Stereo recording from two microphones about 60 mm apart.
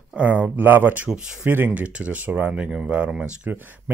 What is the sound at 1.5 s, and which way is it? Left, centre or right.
Speech, right.